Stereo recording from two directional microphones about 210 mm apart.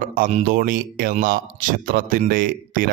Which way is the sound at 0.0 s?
40° right (ahead or behind).